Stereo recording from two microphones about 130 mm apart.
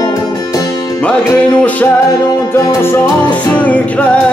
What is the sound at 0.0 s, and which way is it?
Music, 25° left (ahead or behind).